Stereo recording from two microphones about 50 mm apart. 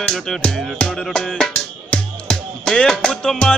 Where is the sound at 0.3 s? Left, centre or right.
Centre.